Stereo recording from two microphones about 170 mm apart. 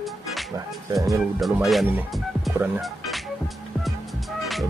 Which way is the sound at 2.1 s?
Centre (ahead or behind).